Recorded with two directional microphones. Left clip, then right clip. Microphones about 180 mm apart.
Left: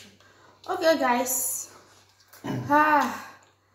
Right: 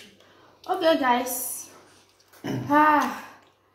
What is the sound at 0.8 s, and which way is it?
Speech, 25° left (ahead or behind).